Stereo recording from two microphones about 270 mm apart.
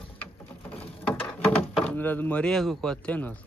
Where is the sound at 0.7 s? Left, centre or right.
Centre.